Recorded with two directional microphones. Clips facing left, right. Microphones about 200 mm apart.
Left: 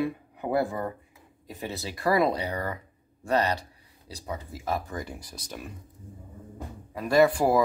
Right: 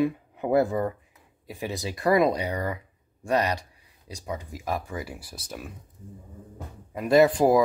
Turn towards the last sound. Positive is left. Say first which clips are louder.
# right 3 dB
turn(degrees=-20)  # may be behind; listen again after turning